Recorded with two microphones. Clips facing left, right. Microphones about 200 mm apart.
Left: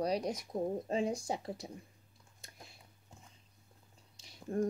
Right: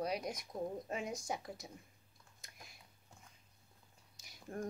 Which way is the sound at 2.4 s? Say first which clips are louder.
Left 4 dB; 30° left (ahead or behind).